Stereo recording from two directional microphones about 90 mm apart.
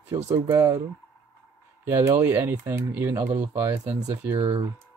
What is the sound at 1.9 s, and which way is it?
Speech, 35° right (ahead or behind).